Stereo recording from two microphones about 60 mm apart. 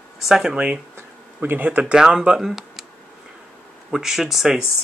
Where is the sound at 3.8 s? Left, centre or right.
Centre.